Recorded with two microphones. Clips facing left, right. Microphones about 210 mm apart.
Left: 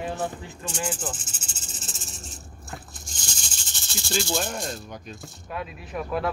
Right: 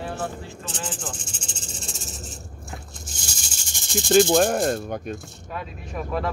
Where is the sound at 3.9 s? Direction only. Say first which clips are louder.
Right 11 dB; 55° right (ahead or behind).